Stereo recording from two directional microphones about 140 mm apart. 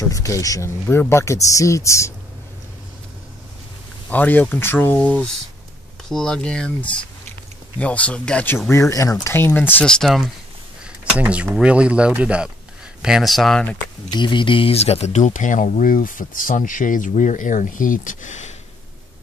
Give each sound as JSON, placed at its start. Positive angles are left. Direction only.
{"t": 0.1, "sound": "speech", "side_deg": 25}
{"t": 4.1, "sound": "speech", "side_deg": 10}
{"t": 8.6, "sound": "speech", "side_deg": 20}
{"t": 11.1, "sound": "speech", "side_deg": -10}
{"t": 14.1, "sound": "speech", "side_deg": 35}